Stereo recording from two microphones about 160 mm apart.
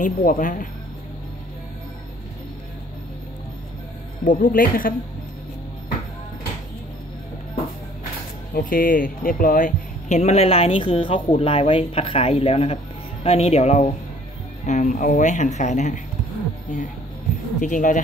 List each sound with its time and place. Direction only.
0.0 s speech: 60° left (ahead or behind)
4.2 s speech: 55° left (ahead or behind)
8.5 s a woman's voice: 60° left (ahead or behind)
17.6 s a woman's voice: 50° left (ahead or behind)